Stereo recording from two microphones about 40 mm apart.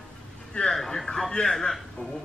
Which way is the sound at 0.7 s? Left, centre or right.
Centre.